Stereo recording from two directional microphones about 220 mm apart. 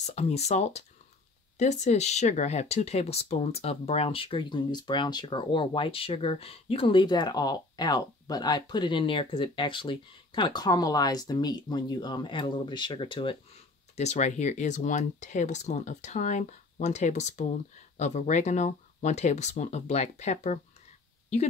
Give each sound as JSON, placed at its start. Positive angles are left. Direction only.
{"t": 0.0, "sound": "speech", "side_deg": 30}